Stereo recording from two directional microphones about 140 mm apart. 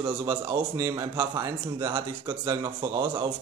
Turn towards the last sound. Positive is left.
turn(degrees=-25)  # may be behind; listen again after turning